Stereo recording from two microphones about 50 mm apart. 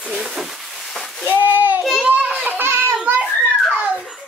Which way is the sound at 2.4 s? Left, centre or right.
Right.